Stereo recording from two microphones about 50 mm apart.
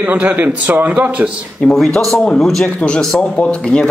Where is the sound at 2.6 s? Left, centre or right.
Left.